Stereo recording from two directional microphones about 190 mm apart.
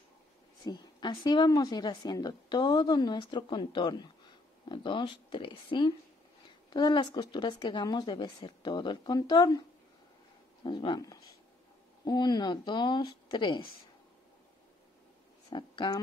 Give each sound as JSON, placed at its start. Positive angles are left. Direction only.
{"t": 0.7, "sound": "a woman's voice", "side_deg": 20}
{"t": 15.5, "sound": "a woman's voice", "side_deg": 25}